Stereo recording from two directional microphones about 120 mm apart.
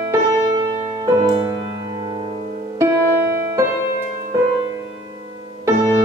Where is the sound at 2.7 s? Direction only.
20° right (ahead or behind).